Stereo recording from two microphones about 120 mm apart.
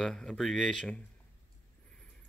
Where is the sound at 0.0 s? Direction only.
5° left (ahead or behind).